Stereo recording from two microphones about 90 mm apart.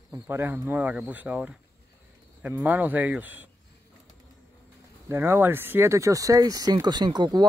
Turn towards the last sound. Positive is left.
turn(degrees=-55)  # may be behind; listen again after turning